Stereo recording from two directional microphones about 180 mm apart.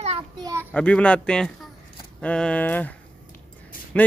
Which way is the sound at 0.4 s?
15° right (ahead or behind).